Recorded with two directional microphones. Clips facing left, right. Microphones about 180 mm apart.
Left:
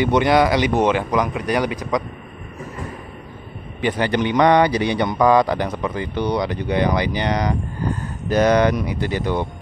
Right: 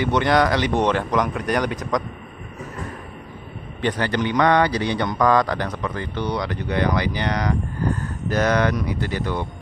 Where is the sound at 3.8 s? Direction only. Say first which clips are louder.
Left 2 dB; 10° left (ahead or behind).